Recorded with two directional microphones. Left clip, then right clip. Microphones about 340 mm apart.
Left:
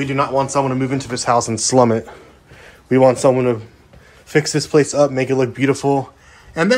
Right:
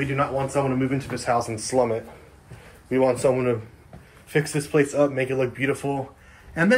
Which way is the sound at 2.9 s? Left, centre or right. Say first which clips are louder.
Left 8 dB; left.